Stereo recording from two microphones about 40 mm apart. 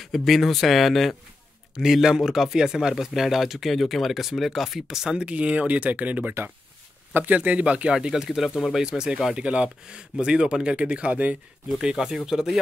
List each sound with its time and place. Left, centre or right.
0.0 s speech: centre
1.8 s speech: centre
5.1 s speech: right
7.3 s speech: right
7.9 s speech: centre
9.4 s speech: right
11.8 s speech: centre